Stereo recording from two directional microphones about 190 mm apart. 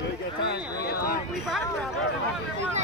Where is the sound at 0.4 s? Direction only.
55° left (ahead or behind).